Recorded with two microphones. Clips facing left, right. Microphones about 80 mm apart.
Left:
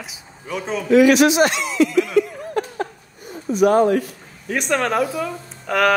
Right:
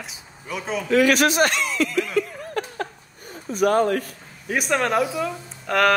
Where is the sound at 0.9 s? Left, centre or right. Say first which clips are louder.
Left 5 dB; right.